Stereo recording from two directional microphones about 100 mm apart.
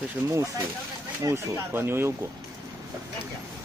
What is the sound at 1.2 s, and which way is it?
Speech, 25° right (ahead or behind).